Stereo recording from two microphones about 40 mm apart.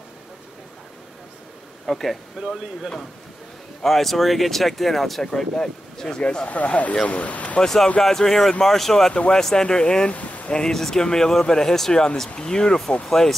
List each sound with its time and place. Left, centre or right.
1.9 s speech: centre
2.3 s speech: centre
3.8 s speech: centre
6.0 s speech: left
6.4 s speech: left
7.6 s speech: centre
10.0 s a sound: left
10.5 s speech: centre